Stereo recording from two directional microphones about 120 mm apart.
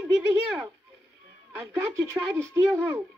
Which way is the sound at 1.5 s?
20° right (ahead or behind).